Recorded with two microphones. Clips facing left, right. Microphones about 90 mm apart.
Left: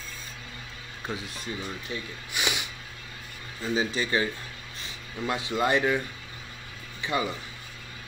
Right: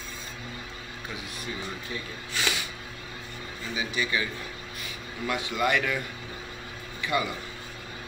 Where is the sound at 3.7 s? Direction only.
35° left (ahead or behind).